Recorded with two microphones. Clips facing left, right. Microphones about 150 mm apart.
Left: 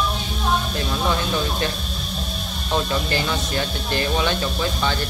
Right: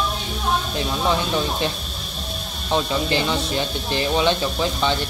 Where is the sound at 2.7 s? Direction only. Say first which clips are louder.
Right 2 dB; 25° right (ahead or behind).